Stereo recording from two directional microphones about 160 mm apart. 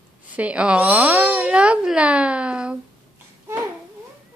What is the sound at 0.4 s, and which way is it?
Speech, 5° right (ahead or behind).